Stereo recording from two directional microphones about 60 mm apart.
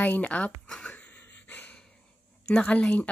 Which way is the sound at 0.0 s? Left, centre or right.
Left.